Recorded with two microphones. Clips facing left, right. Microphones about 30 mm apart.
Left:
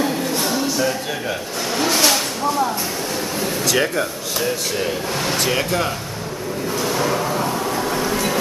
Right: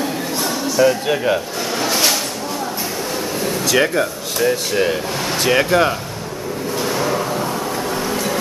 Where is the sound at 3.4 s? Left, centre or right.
Centre.